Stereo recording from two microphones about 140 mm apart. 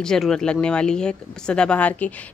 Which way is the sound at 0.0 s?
5° left (ahead or behind).